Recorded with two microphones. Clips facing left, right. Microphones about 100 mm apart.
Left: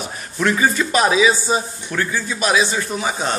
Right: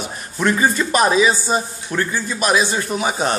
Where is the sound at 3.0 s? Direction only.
15° right (ahead or behind).